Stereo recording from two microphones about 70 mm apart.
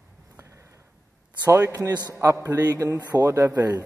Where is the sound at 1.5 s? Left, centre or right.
Right.